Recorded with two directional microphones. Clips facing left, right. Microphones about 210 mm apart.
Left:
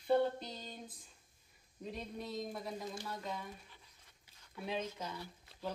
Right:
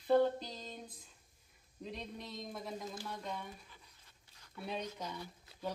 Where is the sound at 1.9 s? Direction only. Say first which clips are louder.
Left 2 dB; 5° left (ahead or behind).